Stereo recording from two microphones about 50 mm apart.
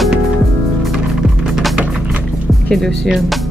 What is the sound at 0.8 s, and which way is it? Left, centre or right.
Music, centre.